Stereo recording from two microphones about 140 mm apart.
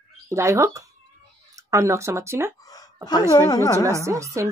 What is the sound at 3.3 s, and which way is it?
Speech, 25° left (ahead or behind).